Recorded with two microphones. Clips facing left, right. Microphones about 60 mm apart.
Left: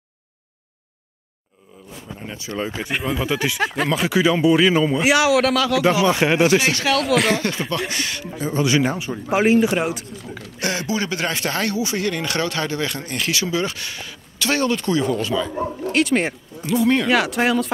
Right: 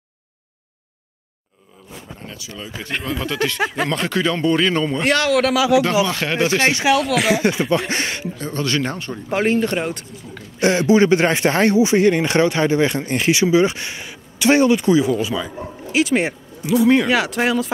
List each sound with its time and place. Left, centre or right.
2.3 s speech: left
2.8 s speech: centre
3.6 s speech: centre
5.6 s speech: centre
6.0 s speech: centre
6.7 s speech: centre
7.0 s speech: centre
7.3 s speech: centre
7.9 s speech: right
8.4 s speech: centre
10.6 s speech: right; by 17.6 s centre